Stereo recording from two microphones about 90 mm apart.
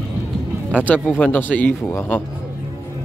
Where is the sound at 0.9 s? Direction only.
15° left (ahead or behind).